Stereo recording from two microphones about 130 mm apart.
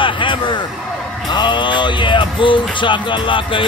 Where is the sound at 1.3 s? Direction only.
35° left (ahead or behind).